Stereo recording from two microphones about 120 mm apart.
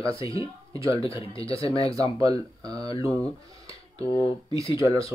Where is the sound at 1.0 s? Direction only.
50° left (ahead or behind).